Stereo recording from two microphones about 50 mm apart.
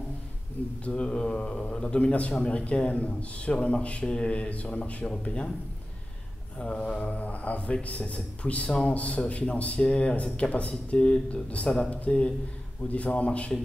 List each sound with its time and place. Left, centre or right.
0.8 s a man's voice: left
6.6 s a man's voice: centre